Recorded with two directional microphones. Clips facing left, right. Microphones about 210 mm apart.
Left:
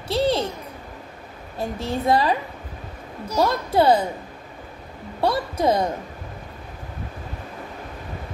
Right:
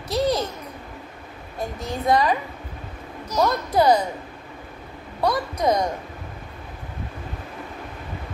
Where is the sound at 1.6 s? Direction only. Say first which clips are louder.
Left 3 dB; 30° left (ahead or behind).